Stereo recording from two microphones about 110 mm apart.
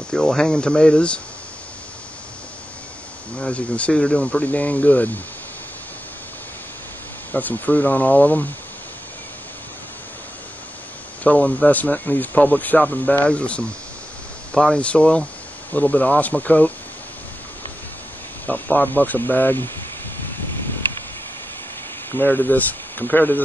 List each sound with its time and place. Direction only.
0.1 s speech: 5° left (ahead or behind)
3.3 s speech: 10° left (ahead or behind)
7.3 s speech: 15° left (ahead or behind)
11.2 s speech: 15° left (ahead or behind)
18.5 s speech: 15° left (ahead or behind)
22.1 s speech: 20° left (ahead or behind)